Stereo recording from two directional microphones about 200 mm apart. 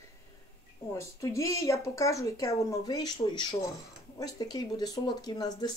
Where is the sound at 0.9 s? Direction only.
15° left (ahead or behind).